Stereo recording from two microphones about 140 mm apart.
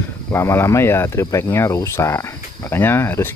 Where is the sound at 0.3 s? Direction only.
20° left (ahead or behind).